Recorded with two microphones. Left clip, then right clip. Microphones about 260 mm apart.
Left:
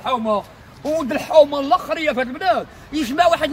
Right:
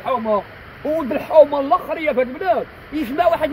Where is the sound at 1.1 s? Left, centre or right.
Centre.